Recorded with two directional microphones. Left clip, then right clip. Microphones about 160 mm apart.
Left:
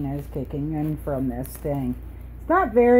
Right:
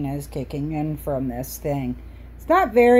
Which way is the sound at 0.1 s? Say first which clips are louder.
Right 1 dB; 20° right (ahead or behind).